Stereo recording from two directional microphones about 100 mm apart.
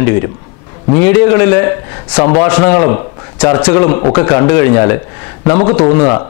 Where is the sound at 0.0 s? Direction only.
20° left (ahead or behind).